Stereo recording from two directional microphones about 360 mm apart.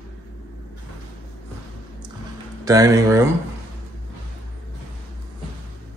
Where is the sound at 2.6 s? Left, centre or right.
Centre.